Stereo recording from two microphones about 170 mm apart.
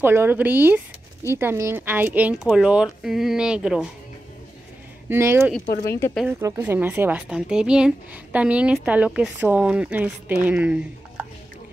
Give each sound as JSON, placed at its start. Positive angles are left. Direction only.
{"t": 0.0, "sound": "a woman's voice", "side_deg": -15}
{"t": 5.1, "sound": "a woman's voice", "side_deg": -15}
{"t": 5.9, "sound": "speech", "side_deg": 15}
{"t": 6.2, "sound": "a woman's voice", "side_deg": -10}